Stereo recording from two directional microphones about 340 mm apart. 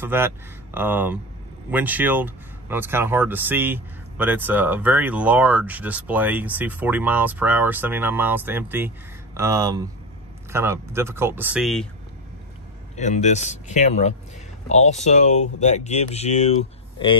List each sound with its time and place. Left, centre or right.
0.0 s speech: centre
12.9 s speech: left